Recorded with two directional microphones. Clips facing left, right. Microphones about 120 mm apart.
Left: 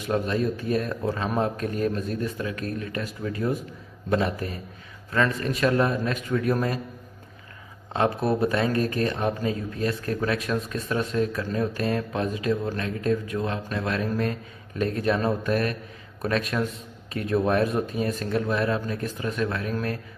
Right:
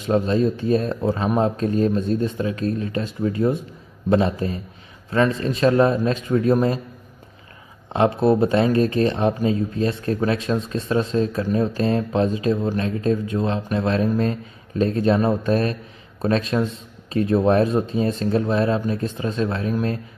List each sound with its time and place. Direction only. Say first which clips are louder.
0.0 s speech: right 6 dB; 25° right (ahead or behind)
7.9 s speech: right 6 dB; 25° right (ahead or behind)